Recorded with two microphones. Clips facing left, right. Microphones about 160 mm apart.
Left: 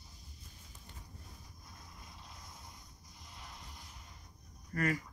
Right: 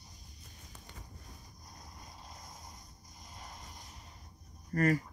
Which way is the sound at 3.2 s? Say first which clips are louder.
Right 3 dB; 45° right (ahead or behind).